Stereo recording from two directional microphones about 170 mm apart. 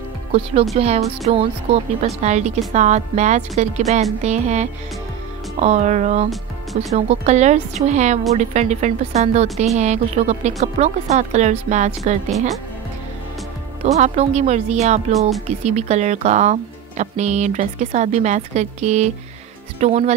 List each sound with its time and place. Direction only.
0.7 s a woman's voice: 35° right (ahead or behind)
13.9 s a woman's voice: 40° right (ahead or behind)